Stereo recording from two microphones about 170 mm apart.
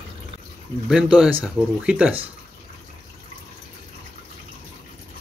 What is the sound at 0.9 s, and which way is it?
Speech, 5° right (ahead or behind).